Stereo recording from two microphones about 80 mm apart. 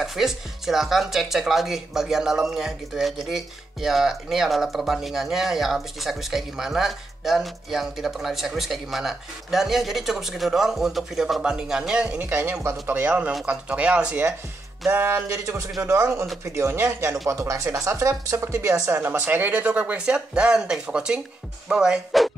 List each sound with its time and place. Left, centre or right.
0.0 s speech: centre
12.1 s speech: right
14.9 s speech: right
18.9 s speech: right; by 22.3 s centre